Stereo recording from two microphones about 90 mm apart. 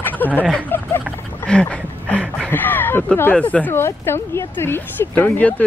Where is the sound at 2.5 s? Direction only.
20° left (ahead or behind).